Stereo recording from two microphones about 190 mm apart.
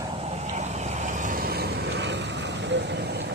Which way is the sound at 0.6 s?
40° right (ahead or behind).